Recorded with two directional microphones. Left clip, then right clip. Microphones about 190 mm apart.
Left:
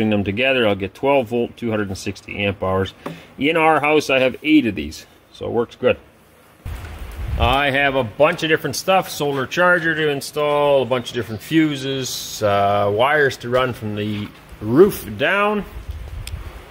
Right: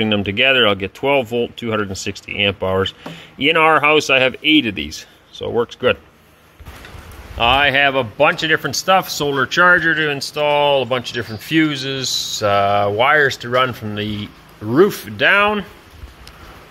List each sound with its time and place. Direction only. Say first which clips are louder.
0.0 s speech: right 3 dB; 5° left (ahead or behind)
7.3 s a man's voice: right 4 dB; 5° left (ahead or behind)